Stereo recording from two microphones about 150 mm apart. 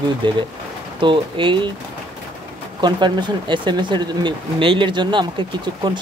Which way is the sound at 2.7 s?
30° right (ahead or behind).